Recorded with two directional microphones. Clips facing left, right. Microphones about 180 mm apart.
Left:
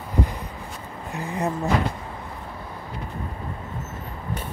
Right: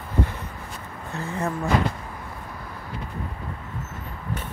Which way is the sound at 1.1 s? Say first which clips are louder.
Left 1 dB; 15° left (ahead or behind).